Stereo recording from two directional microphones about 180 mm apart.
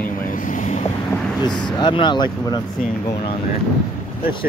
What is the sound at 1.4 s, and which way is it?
Speech, 25° left (ahead or behind).